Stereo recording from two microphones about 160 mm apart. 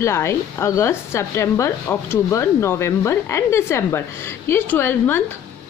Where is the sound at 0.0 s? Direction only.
15° left (ahead or behind).